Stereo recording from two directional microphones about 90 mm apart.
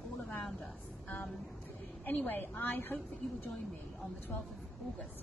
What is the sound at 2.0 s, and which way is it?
Speech, 20° left (ahead or behind).